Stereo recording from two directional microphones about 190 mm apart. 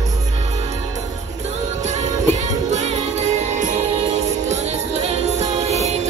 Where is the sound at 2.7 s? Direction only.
35° right (ahead or behind).